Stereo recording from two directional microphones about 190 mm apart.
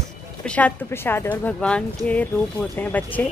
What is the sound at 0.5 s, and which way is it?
Speech, 5° left (ahead or behind).